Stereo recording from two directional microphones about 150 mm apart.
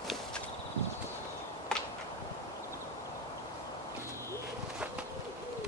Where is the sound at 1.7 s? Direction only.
5° left (ahead or behind).